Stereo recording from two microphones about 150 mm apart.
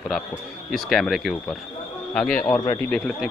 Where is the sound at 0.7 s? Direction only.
Centre (ahead or behind).